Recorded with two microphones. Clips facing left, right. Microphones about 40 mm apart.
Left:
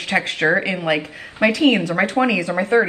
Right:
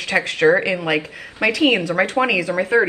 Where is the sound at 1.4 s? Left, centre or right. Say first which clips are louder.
Left 1 dB; right.